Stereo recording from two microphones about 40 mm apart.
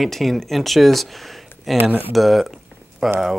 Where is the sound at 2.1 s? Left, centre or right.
Centre.